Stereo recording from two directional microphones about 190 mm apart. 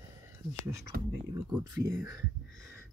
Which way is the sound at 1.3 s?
20° right (ahead or behind).